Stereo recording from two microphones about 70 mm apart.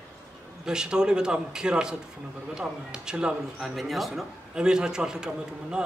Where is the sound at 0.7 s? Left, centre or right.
Centre.